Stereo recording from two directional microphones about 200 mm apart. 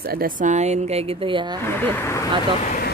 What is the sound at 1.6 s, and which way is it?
Speech, 10° left (ahead or behind).